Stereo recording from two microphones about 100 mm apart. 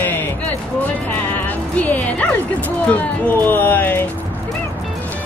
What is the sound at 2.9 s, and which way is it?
Speech, 15° left (ahead or behind).